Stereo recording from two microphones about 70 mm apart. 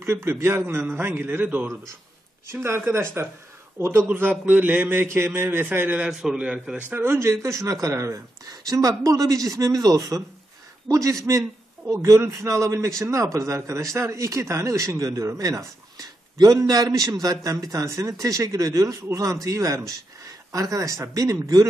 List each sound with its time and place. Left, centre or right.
0.0 s a man's voice: right
2.4 s a man's voice: right
4.1 s a man's voice: right
6.0 s a man's voice: centre
6.9 s a man's voice: right